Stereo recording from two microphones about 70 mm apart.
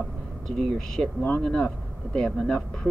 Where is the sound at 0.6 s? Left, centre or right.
Centre.